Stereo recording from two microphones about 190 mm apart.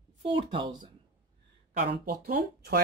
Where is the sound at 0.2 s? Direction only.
25° right (ahead or behind).